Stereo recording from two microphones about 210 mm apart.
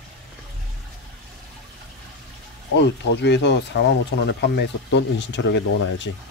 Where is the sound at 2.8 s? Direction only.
55° left (ahead or behind).